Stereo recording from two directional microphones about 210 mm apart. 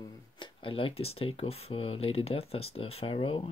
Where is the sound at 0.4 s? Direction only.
25° left (ahead or behind).